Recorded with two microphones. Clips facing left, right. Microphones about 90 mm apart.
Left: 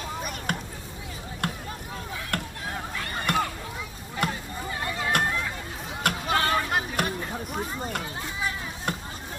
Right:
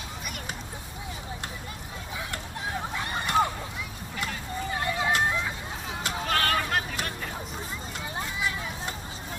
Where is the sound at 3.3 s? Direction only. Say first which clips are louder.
Right 2 dB; 55° left (ahead or behind).